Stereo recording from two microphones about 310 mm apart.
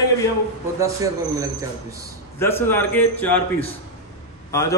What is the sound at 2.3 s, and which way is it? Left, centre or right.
A man's voice, centre.